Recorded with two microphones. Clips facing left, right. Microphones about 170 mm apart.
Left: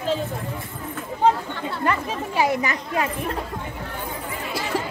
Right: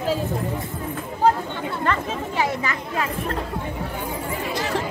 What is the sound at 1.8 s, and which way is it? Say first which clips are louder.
Chatter: left 1 dB; 15° left (ahead or behind).